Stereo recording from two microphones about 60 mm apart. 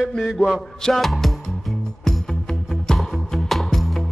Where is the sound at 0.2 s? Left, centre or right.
Centre.